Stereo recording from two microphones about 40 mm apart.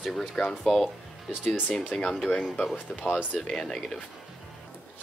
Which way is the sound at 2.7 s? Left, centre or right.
Left.